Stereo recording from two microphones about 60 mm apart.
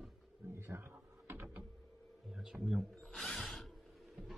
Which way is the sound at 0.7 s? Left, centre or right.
Right.